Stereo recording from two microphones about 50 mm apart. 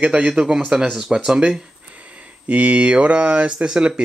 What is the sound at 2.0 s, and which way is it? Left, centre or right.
Speech, right.